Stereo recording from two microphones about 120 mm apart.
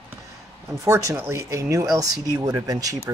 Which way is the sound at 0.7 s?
25° right (ahead or behind).